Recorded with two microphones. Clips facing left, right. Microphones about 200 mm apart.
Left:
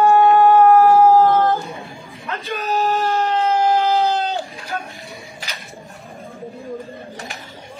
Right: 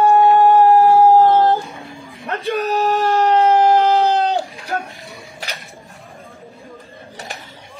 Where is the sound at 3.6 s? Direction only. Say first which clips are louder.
Right 3 dB; 55° right (ahead or behind).